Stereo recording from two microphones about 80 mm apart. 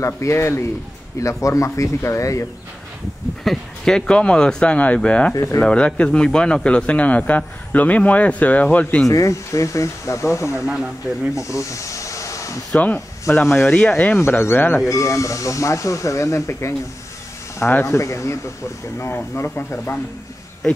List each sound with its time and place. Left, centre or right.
0.0 s speech: left
3.4 s a man's voice: centre
5.3 s speech: left
5.6 s a man's voice: centre
9.1 s speech: left
10.6 s speech: centre
11.3 s snake: left
12.7 s speech: centre
13.2 s speech: left
13.7 s a man's voice: centre
14.1 s speech: left
14.9 s speech: left